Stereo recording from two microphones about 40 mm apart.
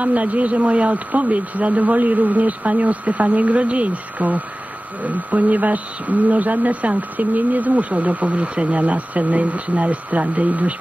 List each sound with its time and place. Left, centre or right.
0.0 s speech: right